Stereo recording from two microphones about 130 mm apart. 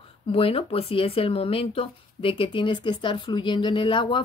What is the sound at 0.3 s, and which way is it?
Speech, 45° left (ahead or behind).